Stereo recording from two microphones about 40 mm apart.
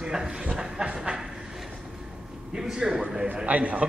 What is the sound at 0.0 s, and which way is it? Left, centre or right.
Speech, centre.